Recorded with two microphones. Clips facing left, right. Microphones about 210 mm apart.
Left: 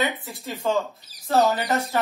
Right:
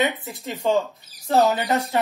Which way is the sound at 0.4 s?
15° right (ahead or behind).